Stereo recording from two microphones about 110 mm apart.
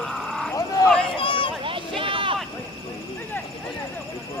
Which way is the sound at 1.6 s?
50° right (ahead or behind).